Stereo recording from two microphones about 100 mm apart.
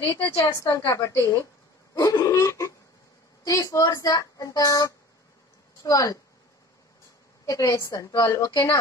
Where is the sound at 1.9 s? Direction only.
35° left (ahead or behind).